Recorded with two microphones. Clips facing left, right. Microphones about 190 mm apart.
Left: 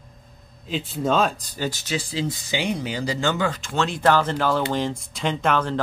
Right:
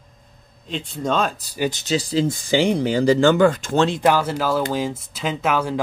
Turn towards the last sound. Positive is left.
turn(degrees=-10)  # may be behind; listen again after turning